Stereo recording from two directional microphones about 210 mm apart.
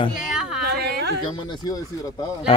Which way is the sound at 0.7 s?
50° right (ahead or behind).